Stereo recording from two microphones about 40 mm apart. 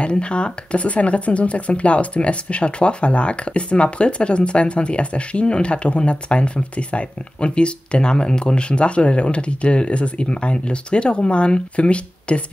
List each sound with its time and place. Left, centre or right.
0.0 s speech: left